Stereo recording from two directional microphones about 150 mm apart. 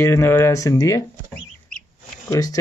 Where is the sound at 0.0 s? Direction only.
15° left (ahead or behind).